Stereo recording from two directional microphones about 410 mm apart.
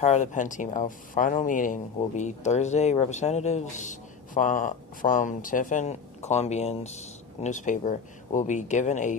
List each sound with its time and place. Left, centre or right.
0.0 s speech: centre